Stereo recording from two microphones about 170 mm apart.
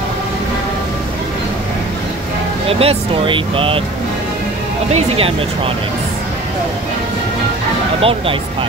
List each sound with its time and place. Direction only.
2.7 s speech: 35° right (ahead or behind)
8.0 s speech: 35° right (ahead or behind)